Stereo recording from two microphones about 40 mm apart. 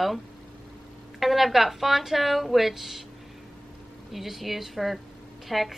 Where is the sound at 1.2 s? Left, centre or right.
Centre.